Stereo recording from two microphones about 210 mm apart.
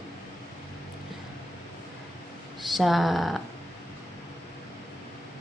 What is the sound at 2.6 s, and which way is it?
Speech, centre (ahead or behind).